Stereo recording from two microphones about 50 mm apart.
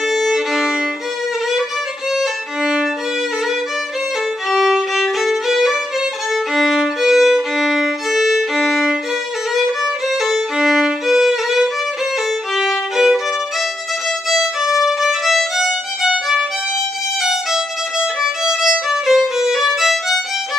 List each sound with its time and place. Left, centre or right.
0.1 s violin: centre
2.1 s violin: centre
4.5 s violin: centre
14.3 s violin: centre